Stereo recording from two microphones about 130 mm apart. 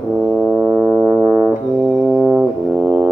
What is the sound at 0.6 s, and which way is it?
Brass instrument, 10° right (ahead or behind).